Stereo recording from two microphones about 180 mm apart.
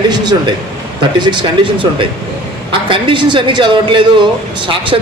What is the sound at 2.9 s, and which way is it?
Speech, 30° right (ahead or behind).